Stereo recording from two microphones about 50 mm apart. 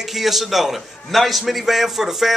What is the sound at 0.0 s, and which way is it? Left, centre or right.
A man's voice, centre.